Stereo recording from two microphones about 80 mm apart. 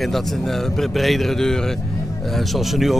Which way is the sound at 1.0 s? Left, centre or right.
Centre.